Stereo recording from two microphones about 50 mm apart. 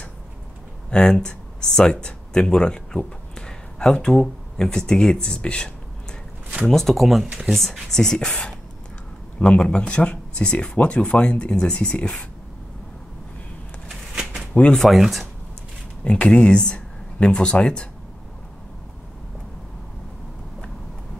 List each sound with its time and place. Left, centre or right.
0.8 s speech: centre
6.6 s speech: centre
14.5 s speech: left
14.8 s speech: centre
16.0 s speech: left